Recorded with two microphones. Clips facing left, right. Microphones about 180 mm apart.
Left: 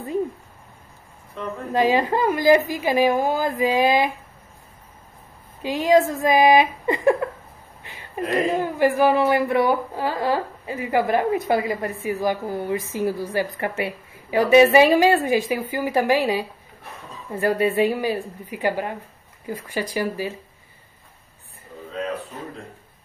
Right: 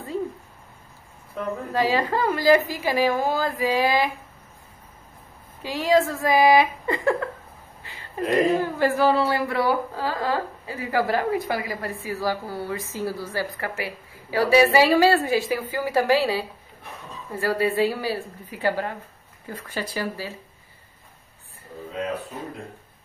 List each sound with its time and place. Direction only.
1.7 s speech: 20° left (ahead or behind)
5.6 s speech: 20° left (ahead or behind)
8.5 s speech: 15° left (ahead or behind)